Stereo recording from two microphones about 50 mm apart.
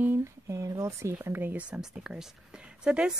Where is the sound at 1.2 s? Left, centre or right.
Right.